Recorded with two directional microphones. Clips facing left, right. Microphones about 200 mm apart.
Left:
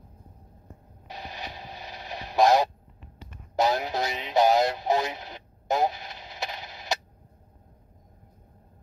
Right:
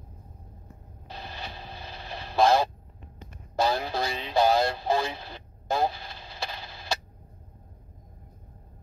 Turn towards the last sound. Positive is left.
turn(degrees=20)  # may be behind; listen again after turning